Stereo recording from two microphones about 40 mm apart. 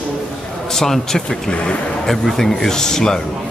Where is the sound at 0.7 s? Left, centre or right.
Centre.